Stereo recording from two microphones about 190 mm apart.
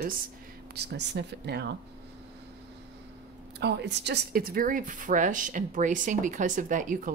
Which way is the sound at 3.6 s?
65° right (ahead or behind).